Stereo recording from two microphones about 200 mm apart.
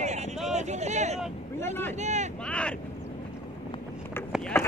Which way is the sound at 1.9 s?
35° right (ahead or behind).